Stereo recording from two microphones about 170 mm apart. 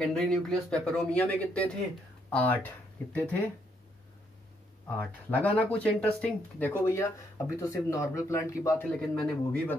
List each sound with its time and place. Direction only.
0.0 s speech: centre (ahead or behind)
4.8 s speech: 10° left (ahead or behind)